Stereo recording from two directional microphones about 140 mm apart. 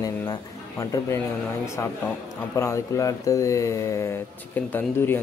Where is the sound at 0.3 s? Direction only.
20° left (ahead or behind).